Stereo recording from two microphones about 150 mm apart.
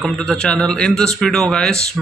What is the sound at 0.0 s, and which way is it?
Speech, 5° left (ahead or behind).